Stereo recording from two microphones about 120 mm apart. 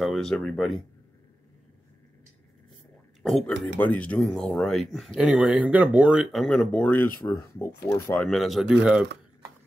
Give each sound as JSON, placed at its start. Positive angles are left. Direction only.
{"t": 0.0, "sound": "speech", "side_deg": 0}
{"t": 3.2, "sound": "speech", "side_deg": 0}
{"t": 3.6, "sound": "speech", "side_deg": 15}
{"t": 6.4, "sound": "speech", "side_deg": 10}
{"t": 8.2, "sound": "speech", "side_deg": 0}